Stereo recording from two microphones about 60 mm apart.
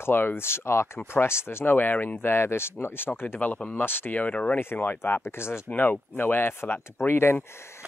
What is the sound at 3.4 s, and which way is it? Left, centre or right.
Speech, left.